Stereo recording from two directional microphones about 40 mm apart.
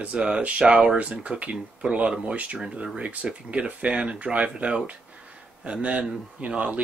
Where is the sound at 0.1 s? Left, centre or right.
Right.